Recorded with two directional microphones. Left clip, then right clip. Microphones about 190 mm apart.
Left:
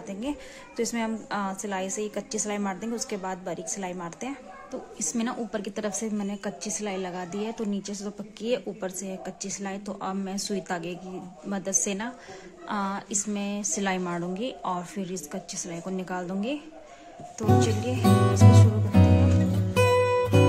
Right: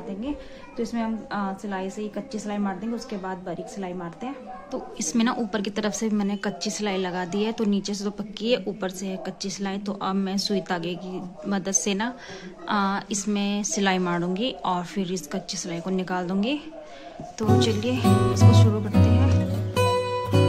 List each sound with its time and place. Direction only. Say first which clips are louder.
0.7 s a woman's voice: even; 30° left (ahead or behind)
4.9 s a woman's voice: right 6 dB; centre (ahead or behind)
17.4 s music: right 2 dB; 5° left (ahead or behind)